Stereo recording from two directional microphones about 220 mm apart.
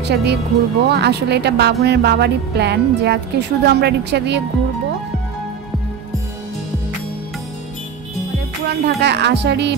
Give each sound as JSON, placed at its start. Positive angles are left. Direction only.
{"t": 0.0, "sound": "speech", "side_deg": -50}
{"t": 8.6, "sound": "speech", "side_deg": -50}